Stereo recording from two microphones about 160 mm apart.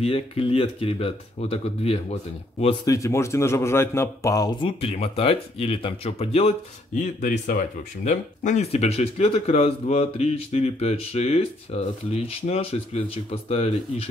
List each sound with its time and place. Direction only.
0.0 s speech: 40° left (ahead or behind)
2.8 s a man's voice: 20° left (ahead or behind); by 6.5 s 40° left (ahead or behind)
7.2 s speech: 55° left (ahead or behind)